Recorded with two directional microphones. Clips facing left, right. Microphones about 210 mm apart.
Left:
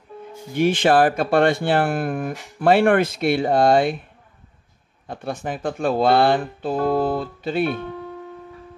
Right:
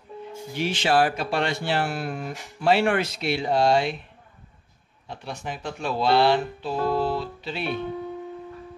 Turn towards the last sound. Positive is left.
turn(degrees=50)  # may be behind; listen again after turning